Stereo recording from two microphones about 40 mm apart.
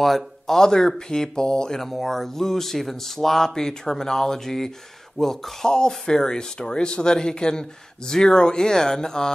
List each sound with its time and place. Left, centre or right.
0.0 s speech: centre
0.6 s speech: centre
1.8 s speech: centre
5.7 s speech: centre